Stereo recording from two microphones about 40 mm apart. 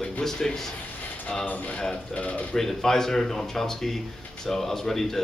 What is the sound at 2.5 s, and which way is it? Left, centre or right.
Speech, centre.